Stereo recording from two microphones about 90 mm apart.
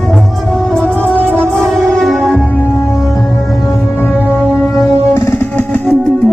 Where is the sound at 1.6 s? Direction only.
Centre (ahead or behind).